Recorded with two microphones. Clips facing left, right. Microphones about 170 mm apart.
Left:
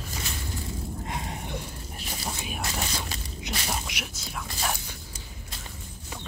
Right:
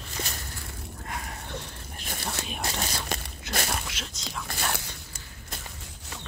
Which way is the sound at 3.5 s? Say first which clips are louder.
Right 2 dB; 15° left (ahead or behind).